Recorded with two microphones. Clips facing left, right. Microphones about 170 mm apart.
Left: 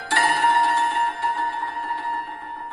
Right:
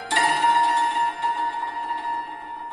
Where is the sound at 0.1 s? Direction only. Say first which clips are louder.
Left 1 dB; 20° right (ahead or behind).